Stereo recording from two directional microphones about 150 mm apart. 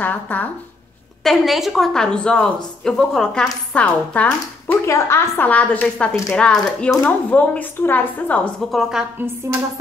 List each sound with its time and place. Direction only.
0.0 s speech: 10° left (ahead or behind)
1.2 s a woman's voice: centre (ahead or behind)
9.0 s a woman's voice: 5° right (ahead or behind)